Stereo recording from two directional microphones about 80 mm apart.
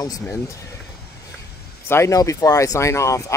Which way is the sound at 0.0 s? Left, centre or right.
Left.